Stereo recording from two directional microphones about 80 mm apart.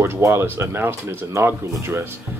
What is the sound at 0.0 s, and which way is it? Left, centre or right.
Speech, right.